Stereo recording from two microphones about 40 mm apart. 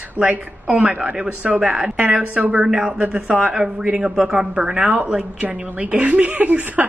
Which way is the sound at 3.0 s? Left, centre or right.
Right.